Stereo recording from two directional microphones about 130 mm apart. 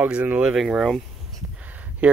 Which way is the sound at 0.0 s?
10° right (ahead or behind).